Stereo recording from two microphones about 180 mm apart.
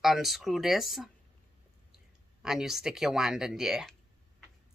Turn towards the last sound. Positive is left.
turn(degrees=-5)  # may be behind; listen again after turning